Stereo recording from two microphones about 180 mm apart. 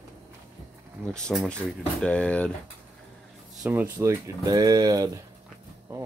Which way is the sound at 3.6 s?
10° right (ahead or behind).